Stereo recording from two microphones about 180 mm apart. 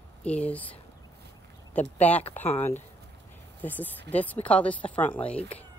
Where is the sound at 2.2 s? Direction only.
35° left (ahead or behind).